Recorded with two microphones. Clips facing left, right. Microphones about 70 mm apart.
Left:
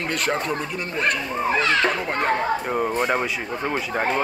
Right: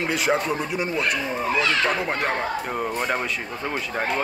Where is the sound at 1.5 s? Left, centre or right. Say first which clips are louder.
Left 2 dB; left.